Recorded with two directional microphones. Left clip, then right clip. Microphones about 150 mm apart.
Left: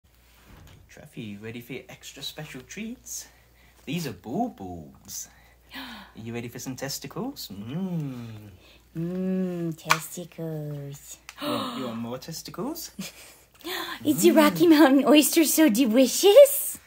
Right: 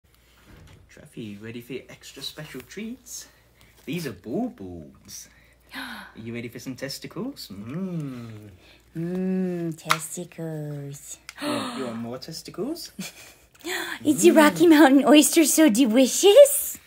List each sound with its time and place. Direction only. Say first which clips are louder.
0.9 s speech: right 1 dB; 35° left (ahead or behind)
3.9 s speech: right 2 dB; 35° left (ahead or behind)
5.7 s speech: right 4 dB; 10° right (ahead or behind)
6.1 s speech: right 1 dB; 40° left (ahead or behind)
8.9 s a woman's voice: right 2 dB; 5° left (ahead or behind)
12.1 s speech: even; 40° left (ahead or behind)
13.6 s a woman's voice: right 3 dB; 5° right (ahead or behind)